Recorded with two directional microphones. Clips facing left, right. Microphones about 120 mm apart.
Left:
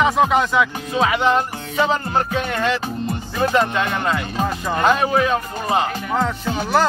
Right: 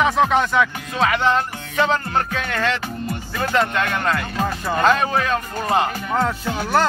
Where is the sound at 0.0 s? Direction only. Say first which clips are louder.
Left 1 dB; 5° left (ahead or behind).